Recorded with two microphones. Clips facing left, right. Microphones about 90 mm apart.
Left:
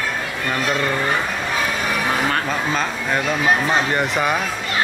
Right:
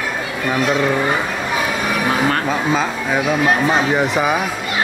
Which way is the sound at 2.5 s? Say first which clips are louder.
Right 4 dB; 5° right (ahead or behind).